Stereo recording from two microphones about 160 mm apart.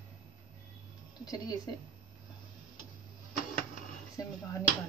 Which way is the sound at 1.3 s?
25° left (ahead or behind).